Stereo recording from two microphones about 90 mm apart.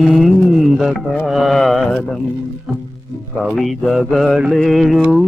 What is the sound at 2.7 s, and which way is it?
Music, centre (ahead or behind).